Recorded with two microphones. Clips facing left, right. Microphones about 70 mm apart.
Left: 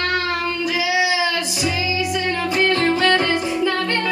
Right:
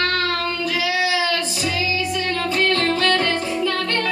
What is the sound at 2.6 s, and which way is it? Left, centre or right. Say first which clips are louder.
Music: left 2 dB; centre.